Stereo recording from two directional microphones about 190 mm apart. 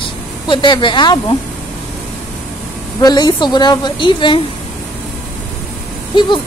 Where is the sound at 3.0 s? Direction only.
20° left (ahead or behind).